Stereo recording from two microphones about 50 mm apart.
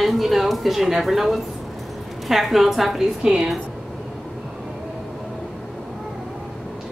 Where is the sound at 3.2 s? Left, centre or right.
Centre.